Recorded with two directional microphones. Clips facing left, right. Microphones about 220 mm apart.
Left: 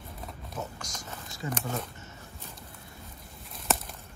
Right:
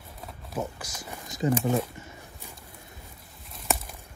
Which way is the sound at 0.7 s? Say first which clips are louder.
Right 2 dB; 10° right (ahead or behind).